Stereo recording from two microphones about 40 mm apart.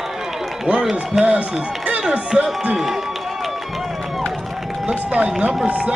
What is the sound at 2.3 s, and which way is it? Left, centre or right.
Speech, centre.